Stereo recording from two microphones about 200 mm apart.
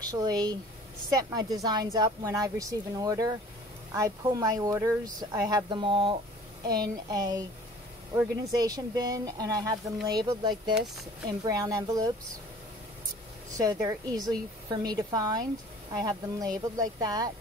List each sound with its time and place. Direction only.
0.0 s a woman's voice: 20° right (ahead or behind)
13.6 s a woman's voice: 20° right (ahead or behind)